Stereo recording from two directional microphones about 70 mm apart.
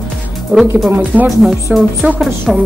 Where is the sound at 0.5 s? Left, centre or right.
Centre.